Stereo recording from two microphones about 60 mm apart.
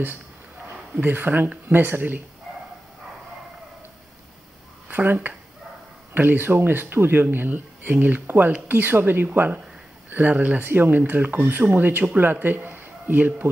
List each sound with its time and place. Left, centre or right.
1.0 s speech: right
4.8 s speech: right